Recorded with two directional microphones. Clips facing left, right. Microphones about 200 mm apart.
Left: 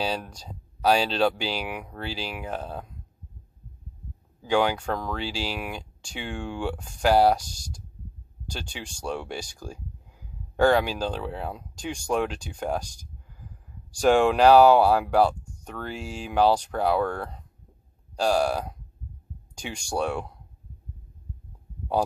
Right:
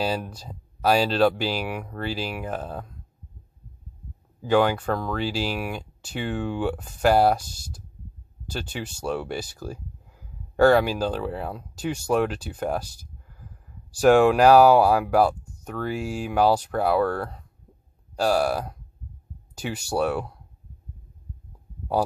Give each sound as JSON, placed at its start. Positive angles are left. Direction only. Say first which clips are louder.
{"t": 0.0, "sound": "speech", "louder": "right 3 dB", "side_deg": -5}
{"t": 4.5, "sound": "speech", "louder": "right 3 dB", "side_deg": -5}